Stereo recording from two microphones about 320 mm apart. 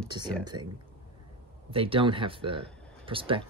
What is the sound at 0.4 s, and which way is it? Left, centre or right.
Speech, centre.